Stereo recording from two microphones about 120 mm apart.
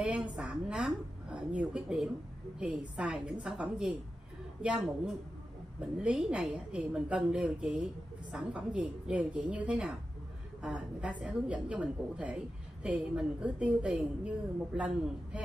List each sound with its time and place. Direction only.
0.0 s a woman's voice: 10° right (ahead or behind)